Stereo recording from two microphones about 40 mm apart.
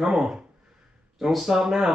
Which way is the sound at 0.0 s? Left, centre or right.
Centre.